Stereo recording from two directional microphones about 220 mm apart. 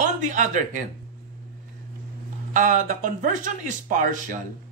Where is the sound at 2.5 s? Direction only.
35° right (ahead or behind).